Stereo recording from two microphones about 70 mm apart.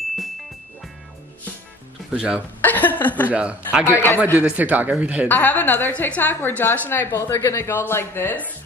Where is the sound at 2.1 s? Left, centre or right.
Centre.